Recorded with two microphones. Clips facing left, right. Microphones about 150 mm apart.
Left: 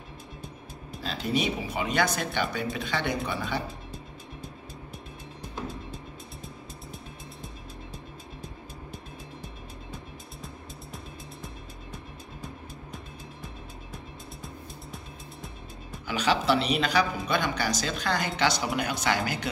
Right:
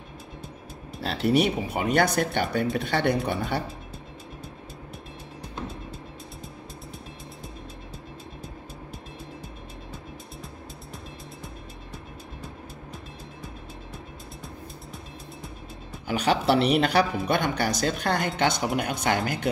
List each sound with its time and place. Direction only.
1.0 s speech: 70° right (ahead or behind)
13.9 s music: centre (ahead or behind)
16.1 s speech: 55° right (ahead or behind)